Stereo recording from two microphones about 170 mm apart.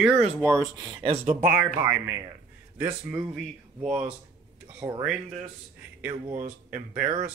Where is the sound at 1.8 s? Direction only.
15° right (ahead or behind).